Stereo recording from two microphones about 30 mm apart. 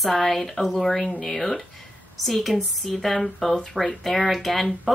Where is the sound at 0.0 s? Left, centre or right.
Centre.